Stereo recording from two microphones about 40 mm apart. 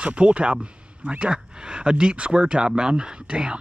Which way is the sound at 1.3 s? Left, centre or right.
Right.